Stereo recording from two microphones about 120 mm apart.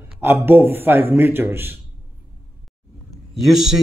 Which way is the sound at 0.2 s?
15° right (ahead or behind).